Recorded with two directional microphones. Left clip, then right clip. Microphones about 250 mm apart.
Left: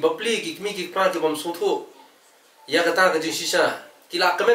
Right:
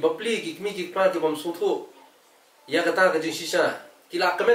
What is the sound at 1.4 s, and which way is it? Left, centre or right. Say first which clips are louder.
Speech: left 2 dB; right.